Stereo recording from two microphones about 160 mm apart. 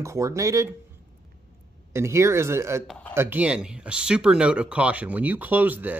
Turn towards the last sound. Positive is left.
turn(degrees=-10)  # may be behind; listen again after turning